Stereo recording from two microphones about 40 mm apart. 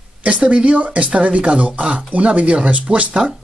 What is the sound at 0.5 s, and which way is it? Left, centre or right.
Speech, right.